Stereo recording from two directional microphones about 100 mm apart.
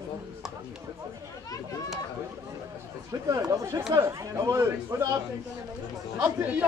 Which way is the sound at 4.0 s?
30° right (ahead or behind).